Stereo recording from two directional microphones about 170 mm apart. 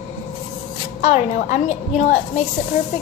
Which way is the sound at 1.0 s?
45° left (ahead or behind).